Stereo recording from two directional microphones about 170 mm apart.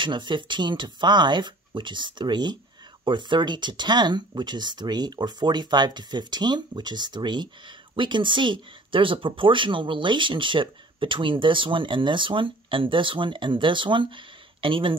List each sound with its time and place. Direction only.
0.0 s speech: 30° right (ahead or behind)